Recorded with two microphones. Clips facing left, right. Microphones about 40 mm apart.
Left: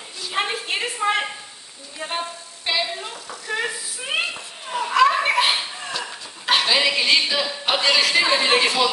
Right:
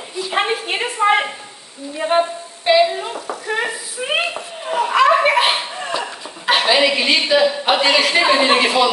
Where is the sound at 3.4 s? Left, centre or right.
Right.